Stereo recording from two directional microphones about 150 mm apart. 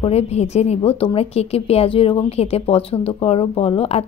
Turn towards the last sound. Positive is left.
turn(degrees=40)  # may be behind; listen again after turning